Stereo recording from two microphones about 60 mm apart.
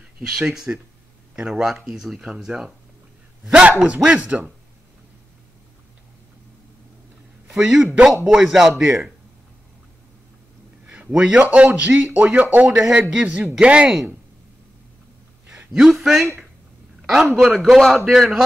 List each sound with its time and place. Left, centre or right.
0.3 s speech: centre
3.8 s speech: right
7.5 s speech: centre
10.9 s a sound: centre
11.5 s speech: right
15.5 s a sound: centre
16.0 s a man's voice: centre